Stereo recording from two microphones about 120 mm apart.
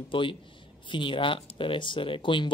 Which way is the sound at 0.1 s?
45° left (ahead or behind).